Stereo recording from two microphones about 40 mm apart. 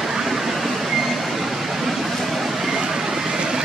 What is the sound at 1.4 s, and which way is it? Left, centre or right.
Vehicle, centre.